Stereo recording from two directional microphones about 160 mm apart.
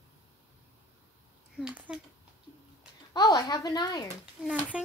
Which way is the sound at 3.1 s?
25° left (ahead or behind).